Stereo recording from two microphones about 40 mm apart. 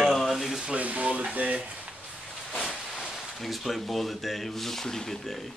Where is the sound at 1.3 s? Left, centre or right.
Right.